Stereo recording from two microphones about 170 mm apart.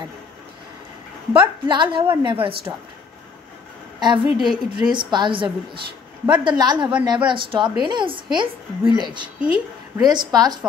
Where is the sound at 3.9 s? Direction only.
25° right (ahead or behind).